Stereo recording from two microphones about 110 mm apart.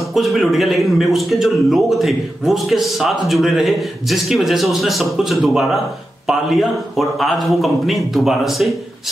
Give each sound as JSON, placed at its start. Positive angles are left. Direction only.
{"t": 0.1, "sound": "a man's voice", "side_deg": 0}